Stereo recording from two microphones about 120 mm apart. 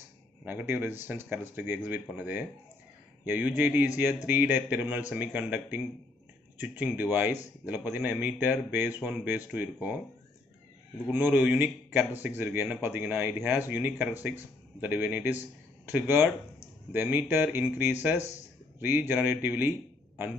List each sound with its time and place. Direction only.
0.5 s a man's voice: 15° right (ahead or behind)
11.1 s a man's voice: 15° right (ahead or behind)